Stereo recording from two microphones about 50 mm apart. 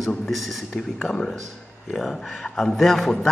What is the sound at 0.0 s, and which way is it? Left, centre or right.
Speech, centre.